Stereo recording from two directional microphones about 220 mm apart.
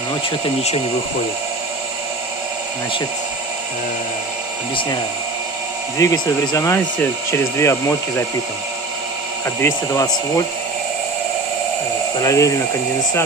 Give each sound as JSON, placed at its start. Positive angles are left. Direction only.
{"t": 0.1, "sound": "speech", "side_deg": 25}
{"t": 5.9, "sound": "speech", "side_deg": 15}
{"t": 9.6, "sound": "speech", "side_deg": 15}
{"t": 12.2, "sound": "speech", "side_deg": 15}